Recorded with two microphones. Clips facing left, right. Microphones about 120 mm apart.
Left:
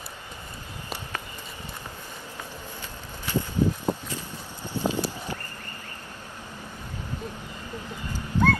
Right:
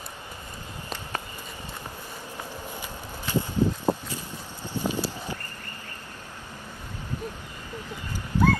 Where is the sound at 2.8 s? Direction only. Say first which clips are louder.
Right 2 dB; 15° right (ahead or behind).